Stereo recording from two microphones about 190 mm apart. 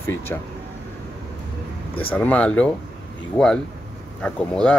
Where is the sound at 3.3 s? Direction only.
5° left (ahead or behind).